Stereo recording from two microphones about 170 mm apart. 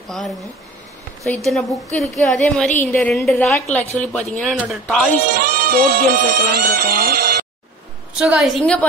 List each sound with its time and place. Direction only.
0.1 s a woman's voice: centre (ahead or behind)
5.3 s speech: 60° right (ahead or behind)
8.2 s a woman's voice: 5° right (ahead or behind)